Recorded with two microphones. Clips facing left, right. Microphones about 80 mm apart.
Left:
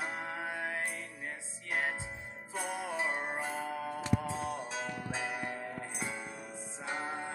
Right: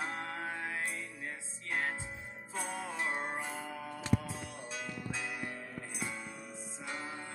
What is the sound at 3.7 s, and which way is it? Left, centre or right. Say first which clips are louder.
Music: right 1 dB; left.